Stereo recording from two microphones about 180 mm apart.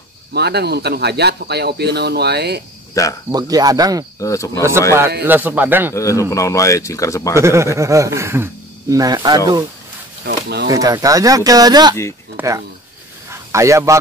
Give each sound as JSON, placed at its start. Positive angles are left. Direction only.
{"t": 0.3, "sound": "speech", "side_deg": -65}
{"t": 2.9, "sound": "cricket", "side_deg": 20}
{"t": 3.3, "sound": "speech", "side_deg": -20}
{"t": 4.2, "sound": "a man's voice", "side_deg": 15}
{"t": 5.2, "sound": "speech", "side_deg": -10}
{"t": 5.9, "sound": "a man's voice", "side_deg": 15}
{"t": 7.3, "sound": "speech", "side_deg": -15}
{"t": 10.2, "sound": "speech", "side_deg": -65}
{"t": 10.7, "sound": "speech", "side_deg": -20}